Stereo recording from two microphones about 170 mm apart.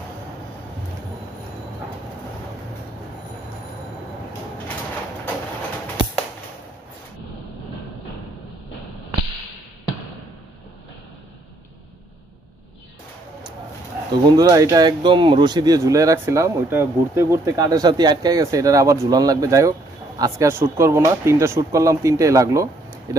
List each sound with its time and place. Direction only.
14.1 s speech: 25° right (ahead or behind)